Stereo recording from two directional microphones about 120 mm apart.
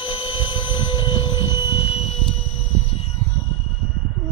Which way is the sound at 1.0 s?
45° left (ahead or behind).